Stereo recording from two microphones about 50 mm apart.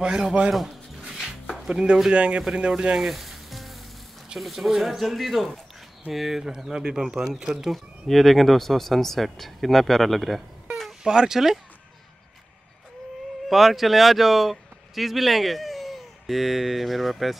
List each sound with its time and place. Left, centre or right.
0.0 s speech: centre
0.5 s a sound: centre
1.7 s speech: centre
2.7 s sizzle: centre
4.4 s speech: centre
11.1 s speech: centre
13.5 s speech: centre